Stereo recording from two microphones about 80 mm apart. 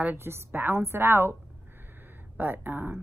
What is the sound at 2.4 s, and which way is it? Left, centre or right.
Speech, right.